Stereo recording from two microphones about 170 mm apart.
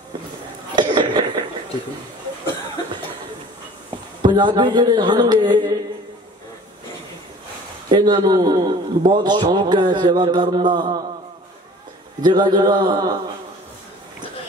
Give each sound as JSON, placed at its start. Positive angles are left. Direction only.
{"t": 0.7, "sound": "a sound", "side_deg": -25}
{"t": 4.2, "sound": "a man's voice", "side_deg": -25}
{"t": 7.9, "sound": "a man's voice", "side_deg": -25}
{"t": 12.2, "sound": "a man's voice", "side_deg": -25}